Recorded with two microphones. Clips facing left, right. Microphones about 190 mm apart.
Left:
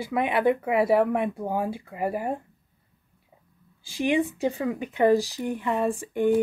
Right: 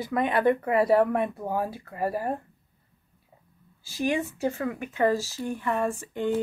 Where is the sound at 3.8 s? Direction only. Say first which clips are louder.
Left 3 dB; 15° left (ahead or behind).